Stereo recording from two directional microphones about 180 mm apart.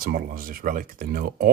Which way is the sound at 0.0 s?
55° right (ahead or behind).